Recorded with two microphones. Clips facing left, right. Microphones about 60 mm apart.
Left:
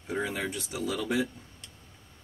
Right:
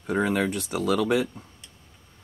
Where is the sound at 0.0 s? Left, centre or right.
Right.